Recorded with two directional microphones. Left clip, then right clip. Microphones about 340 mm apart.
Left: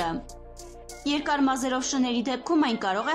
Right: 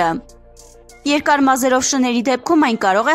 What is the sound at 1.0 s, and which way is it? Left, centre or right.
A woman's voice, right.